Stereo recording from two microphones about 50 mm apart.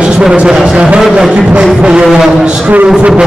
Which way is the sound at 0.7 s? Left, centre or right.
Right.